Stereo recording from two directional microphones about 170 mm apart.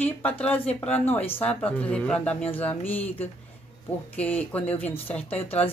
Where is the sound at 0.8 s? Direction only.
40° left (ahead or behind).